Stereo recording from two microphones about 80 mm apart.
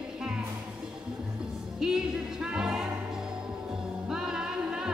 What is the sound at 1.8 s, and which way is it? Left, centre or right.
Music, centre.